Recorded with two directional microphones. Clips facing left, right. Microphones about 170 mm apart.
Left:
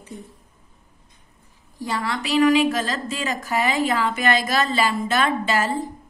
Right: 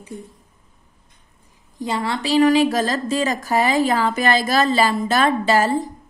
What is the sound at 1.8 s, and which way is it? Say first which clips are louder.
A woman's voice: right 3 dB; 20° right (ahead or behind).